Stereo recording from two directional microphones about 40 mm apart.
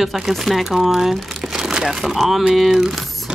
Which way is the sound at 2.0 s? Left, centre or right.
Centre.